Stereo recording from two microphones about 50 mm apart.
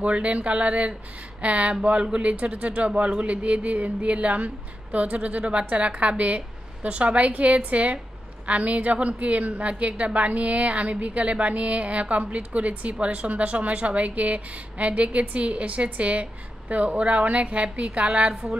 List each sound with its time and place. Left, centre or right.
0.0 s a woman's voice: right